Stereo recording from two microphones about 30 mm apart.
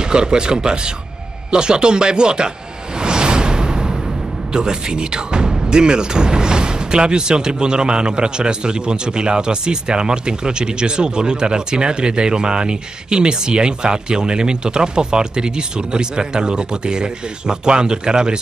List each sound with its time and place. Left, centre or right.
0.1 s speech: right
3.0 s music: right
4.5 s speech: right